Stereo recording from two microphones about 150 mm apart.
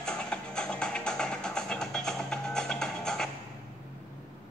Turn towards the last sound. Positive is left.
turn(degrees=5)  # may be behind; listen again after turning